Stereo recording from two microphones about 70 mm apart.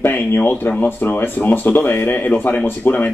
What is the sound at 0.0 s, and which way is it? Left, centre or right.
Speech, left.